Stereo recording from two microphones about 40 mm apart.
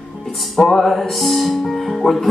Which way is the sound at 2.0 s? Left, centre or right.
Centre.